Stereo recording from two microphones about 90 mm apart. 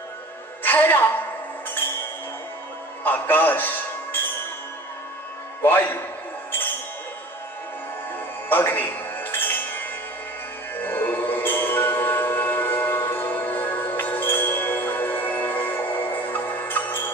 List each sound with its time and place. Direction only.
0.7 s a woman's voice: 20° left (ahead or behind)
3.0 s music: 20° left (ahead or behind)
5.6 s a man's voice: 20° left (ahead or behind)
8.5 s music: 20° left (ahead or behind)